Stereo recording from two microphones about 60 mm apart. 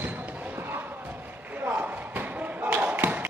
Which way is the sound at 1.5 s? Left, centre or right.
Right.